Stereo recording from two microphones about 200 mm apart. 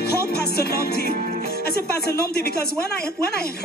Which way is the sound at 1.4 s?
50° left (ahead or behind).